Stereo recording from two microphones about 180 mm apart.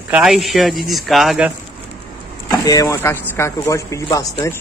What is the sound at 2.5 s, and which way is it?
Speech, 20° left (ahead or behind).